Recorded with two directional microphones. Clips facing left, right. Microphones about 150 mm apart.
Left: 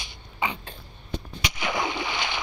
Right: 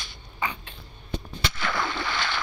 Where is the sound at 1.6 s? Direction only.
15° left (ahead or behind).